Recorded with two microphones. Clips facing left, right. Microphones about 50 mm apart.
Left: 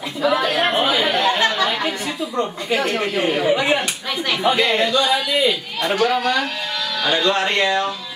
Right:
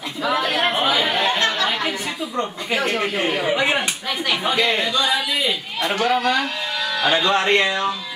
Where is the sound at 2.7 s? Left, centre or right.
Centre.